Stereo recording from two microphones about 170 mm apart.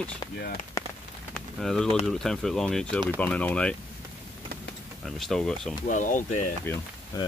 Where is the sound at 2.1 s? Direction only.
Centre (ahead or behind).